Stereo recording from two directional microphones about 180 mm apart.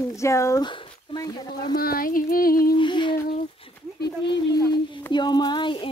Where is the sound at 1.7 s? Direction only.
55° left (ahead or behind).